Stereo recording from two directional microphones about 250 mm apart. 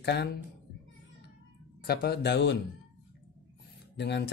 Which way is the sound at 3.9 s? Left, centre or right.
Left.